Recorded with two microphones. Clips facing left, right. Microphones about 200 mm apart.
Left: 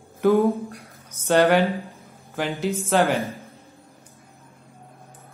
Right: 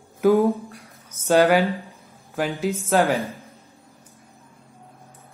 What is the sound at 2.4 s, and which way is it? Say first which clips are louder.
Speech: right 1 dB; centre (ahead or behind).